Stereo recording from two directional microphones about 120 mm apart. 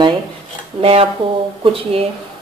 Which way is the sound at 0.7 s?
55° right (ahead or behind).